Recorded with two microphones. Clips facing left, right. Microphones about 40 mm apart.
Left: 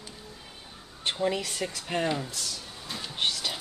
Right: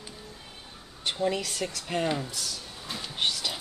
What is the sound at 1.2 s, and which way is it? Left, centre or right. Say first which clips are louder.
Speech: right 1 dB; centre.